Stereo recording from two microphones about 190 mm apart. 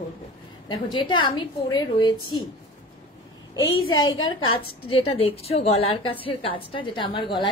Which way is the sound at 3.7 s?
90° left.